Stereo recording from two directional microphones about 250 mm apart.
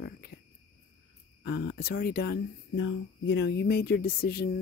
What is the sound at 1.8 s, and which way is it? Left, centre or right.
Speech, left.